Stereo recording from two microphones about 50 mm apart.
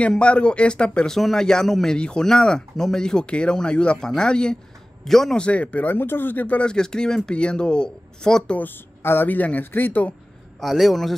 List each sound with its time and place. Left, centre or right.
0.2 s speech: left
1.1 s speech: centre
5.0 s a man's voice: centre
5.4 s speech: left
5.9 s speech: left
6.6 s speech: centre
8.5 s speech: left
10.6 s a man's voice: centre